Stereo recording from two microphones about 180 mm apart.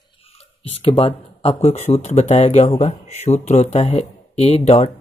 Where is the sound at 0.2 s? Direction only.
35° left (ahead or behind).